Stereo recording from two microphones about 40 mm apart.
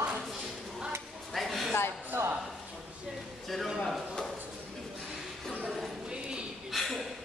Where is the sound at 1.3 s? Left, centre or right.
Centre.